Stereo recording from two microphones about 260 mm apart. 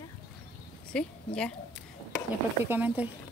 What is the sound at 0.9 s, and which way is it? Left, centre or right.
Speech, centre.